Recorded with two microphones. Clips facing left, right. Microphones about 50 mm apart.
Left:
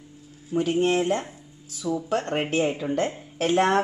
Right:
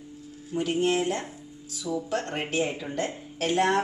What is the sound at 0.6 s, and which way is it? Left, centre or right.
A woman's voice, left.